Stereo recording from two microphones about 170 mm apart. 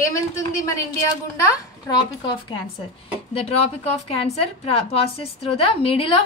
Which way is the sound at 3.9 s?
35° left (ahead or behind).